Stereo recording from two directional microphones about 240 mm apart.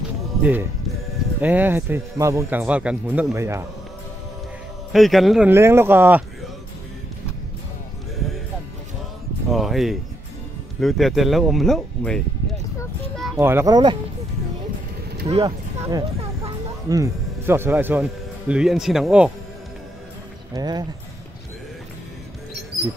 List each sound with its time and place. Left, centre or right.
0.4 s speech: centre
4.9 s speech: centre
9.5 s speech: centre
13.1 s music: centre
13.4 s speech: centre
15.2 s music: centre
18.5 s speech: centre
20.5 s speech: centre